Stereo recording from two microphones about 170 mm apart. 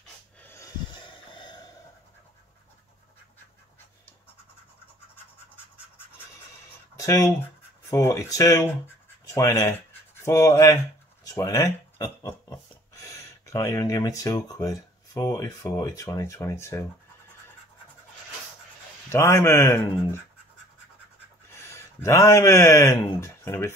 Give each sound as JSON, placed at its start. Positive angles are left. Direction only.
{"t": 0.4, "sound": "snort", "side_deg": 15}
{"t": 1.0, "sound": "snort", "side_deg": 30}
{"t": 7.0, "sound": "a sound", "side_deg": 20}
{"t": 7.9, "sound": "a man's voice", "side_deg": 20}
{"t": 19.0, "sound": "a man's voice", "side_deg": 15}
{"t": 21.5, "sound": "speech", "side_deg": 15}